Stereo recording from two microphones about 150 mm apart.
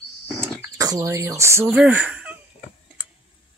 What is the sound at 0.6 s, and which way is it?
Speech, 25° right (ahead or behind).